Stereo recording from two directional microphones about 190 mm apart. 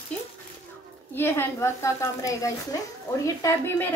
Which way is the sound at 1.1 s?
10° left (ahead or behind).